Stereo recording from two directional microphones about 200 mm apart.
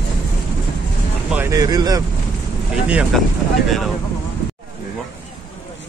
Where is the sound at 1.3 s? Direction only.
15° right (ahead or behind).